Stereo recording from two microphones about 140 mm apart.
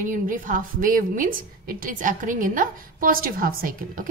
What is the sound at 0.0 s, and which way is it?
A woman's voice, 70° right (ahead or behind).